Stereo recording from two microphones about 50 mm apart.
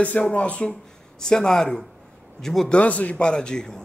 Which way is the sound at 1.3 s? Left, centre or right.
Centre.